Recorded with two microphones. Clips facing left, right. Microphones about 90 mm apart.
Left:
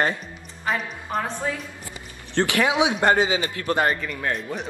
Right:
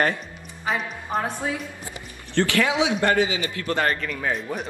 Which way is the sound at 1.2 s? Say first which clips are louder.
Even; 15° right (ahead or behind).